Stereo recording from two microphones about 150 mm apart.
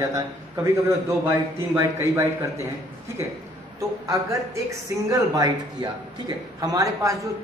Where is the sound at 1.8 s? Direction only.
15° right (ahead or behind).